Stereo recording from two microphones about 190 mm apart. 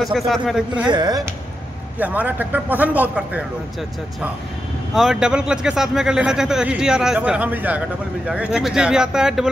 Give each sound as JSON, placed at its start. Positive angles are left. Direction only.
{"t": 0.0, "sound": "speech", "side_deg": 0}
{"t": 0.9, "sound": "speech", "side_deg": -20}
{"t": 2.0, "sound": "a man's voice", "side_deg": -10}
{"t": 4.9, "sound": "speech", "side_deg": 0}